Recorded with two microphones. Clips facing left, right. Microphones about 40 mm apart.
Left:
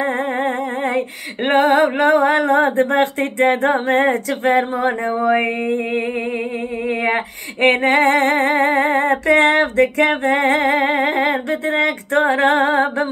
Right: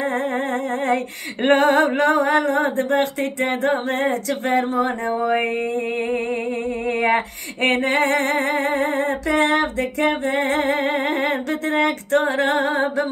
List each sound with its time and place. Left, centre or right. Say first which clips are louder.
1.4 s a sound: left 2 dB; centre
2.0 s female singing: left 3 dB; left
7.6 s female singing: left 5 dB; left
10.8 s female singing: left 4 dB; left